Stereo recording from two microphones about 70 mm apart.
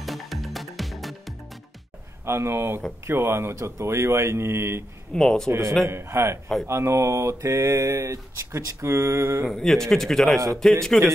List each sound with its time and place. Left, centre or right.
0.0 s music: centre
2.2 s speech: right
5.1 s speech: centre
5.9 s speech: right
6.7 s mantra: right
9.5 s a man's voice: centre